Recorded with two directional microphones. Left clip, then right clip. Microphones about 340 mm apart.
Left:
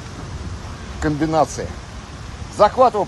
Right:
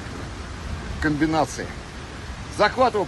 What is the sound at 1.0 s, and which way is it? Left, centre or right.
A man's voice, left.